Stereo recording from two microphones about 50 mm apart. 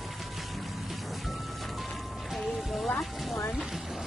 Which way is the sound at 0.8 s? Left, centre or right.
Centre.